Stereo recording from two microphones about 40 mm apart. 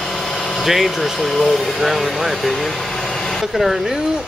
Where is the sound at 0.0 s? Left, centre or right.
Centre.